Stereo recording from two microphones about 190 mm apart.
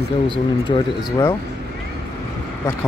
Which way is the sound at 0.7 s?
25° left (ahead or behind).